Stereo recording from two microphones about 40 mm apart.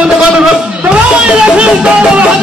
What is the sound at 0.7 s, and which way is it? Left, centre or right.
Speech, right.